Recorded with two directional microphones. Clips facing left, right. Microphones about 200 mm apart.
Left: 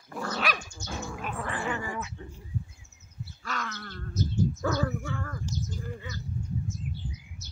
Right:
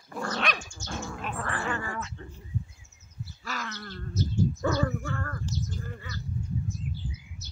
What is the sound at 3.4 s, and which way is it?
Wild animals, 5° right (ahead or behind).